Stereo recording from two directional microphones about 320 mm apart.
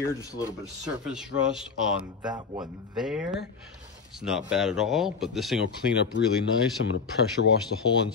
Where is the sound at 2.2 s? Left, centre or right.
Centre.